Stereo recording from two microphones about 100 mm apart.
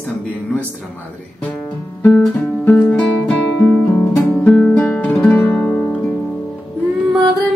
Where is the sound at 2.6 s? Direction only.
15° left (ahead or behind).